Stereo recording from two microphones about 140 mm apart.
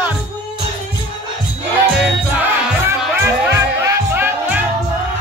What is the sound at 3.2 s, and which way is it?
Music, 20° right (ahead or behind).